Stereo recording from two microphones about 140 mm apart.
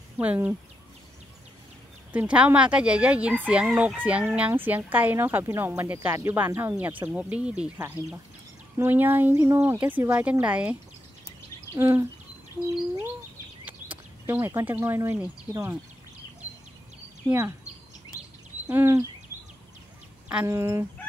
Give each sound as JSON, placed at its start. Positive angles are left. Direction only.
{"t": 0.2, "sound": "a woman's voice", "side_deg": -10}
{"t": 2.1, "sound": "a woman's voice", "side_deg": -10}
{"t": 13.7, "sound": "speech", "side_deg": -10}
{"t": 17.3, "sound": "fowl", "side_deg": -20}
{"t": 18.7, "sound": "a woman's voice", "side_deg": -15}
{"t": 20.4, "sound": "fowl", "side_deg": -20}